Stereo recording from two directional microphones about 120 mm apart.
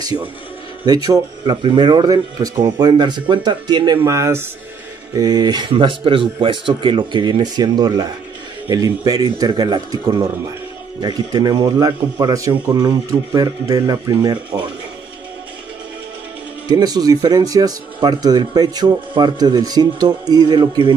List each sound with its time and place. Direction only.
0.8 s speech: 35° right (ahead or behind)
4.0 s speech: 25° right (ahead or behind); by 14.7 s 40° right (ahead or behind)
16.7 s speech: 35° right (ahead or behind)